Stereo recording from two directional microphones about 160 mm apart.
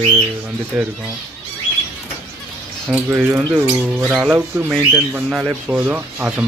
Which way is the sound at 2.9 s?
10° right (ahead or behind).